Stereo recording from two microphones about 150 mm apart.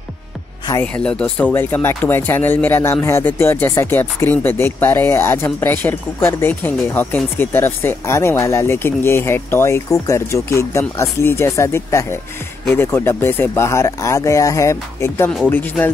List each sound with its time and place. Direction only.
0.9 s speech: 5° left (ahead or behind)